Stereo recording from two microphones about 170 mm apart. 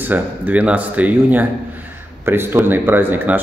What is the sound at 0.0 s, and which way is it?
A man's voice, 10° right (ahead or behind).